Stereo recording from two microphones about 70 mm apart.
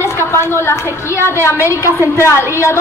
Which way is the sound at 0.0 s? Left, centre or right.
Left.